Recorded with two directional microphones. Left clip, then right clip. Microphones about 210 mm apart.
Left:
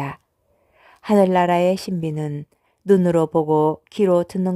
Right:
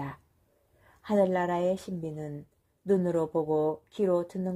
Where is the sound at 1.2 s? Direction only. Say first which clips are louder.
Left 11 dB; 25° left (ahead or behind).